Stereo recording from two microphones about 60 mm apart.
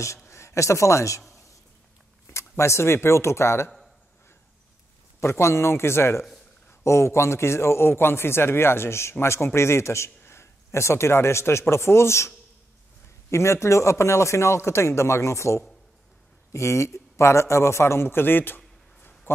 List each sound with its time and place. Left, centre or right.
0.2 s a man's voice: left
2.3 s a man's voice: left
5.2 s a man's voice: left
13.3 s a man's voice: left
19.3 s a sound: left